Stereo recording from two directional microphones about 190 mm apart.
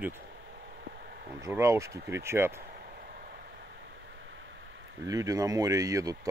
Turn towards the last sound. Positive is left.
turn(degrees=-15)  # may be behind; listen again after turning